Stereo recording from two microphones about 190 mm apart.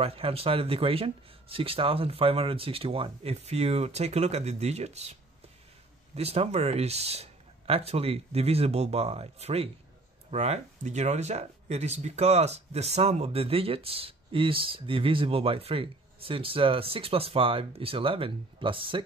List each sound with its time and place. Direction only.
0.0 s speech: 30° right (ahead or behind)
6.1 s speech: 30° right (ahead or behind)